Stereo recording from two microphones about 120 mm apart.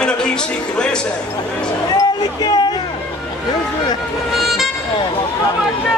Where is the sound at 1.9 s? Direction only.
35° left (ahead or behind).